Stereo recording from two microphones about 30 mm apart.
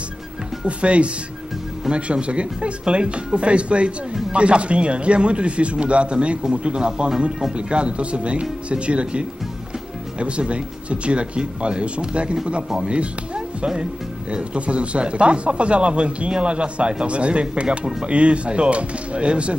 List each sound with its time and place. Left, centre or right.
0.7 s speech: right
14.3 s speech: right